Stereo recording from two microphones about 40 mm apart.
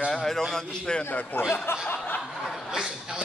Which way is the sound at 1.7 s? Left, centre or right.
Left.